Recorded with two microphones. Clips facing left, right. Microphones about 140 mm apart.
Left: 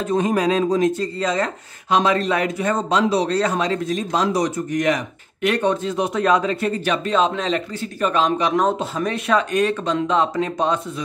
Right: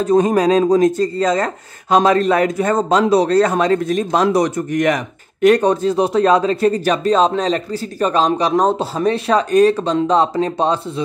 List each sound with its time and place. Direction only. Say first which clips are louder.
0.0 s speech: right 6 dB; 40° right (ahead or behind); by 5.0 s 60° right (ahead or behind)
5.4 s speech: right 7 dB; 40° right (ahead or behind)